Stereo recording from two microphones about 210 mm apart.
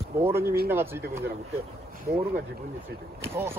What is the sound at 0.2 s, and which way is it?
Speech, 10° right (ahead or behind).